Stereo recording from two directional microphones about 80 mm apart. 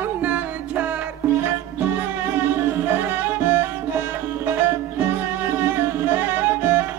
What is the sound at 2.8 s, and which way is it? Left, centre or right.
Music, right.